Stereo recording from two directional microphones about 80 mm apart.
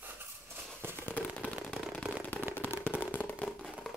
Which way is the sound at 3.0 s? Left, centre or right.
Left.